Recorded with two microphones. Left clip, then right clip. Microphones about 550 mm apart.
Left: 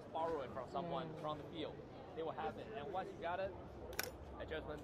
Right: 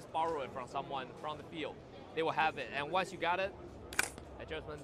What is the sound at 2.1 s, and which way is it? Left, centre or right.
A man's voice, right.